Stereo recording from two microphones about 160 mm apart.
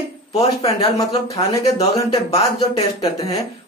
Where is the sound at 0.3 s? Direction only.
40° left (ahead or behind).